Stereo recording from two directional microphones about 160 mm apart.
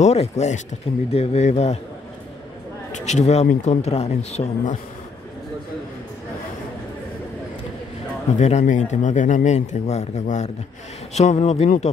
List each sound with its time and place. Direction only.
0.0 s speech: 45° left (ahead or behind)
2.9 s speech: 45° left (ahead or behind)
8.4 s speech: 45° left (ahead or behind)